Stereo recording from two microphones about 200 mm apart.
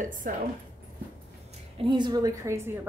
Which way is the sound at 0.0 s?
40° right (ahead or behind).